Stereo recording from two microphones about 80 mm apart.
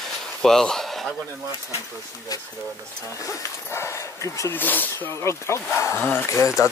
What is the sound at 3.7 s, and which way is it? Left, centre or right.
Speech, left.